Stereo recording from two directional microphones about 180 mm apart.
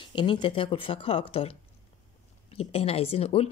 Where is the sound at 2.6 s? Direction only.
35° left (ahead or behind).